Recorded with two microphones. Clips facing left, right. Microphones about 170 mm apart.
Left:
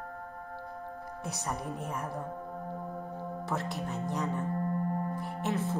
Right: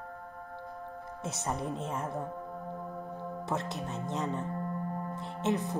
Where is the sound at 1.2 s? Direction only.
20° right (ahead or behind).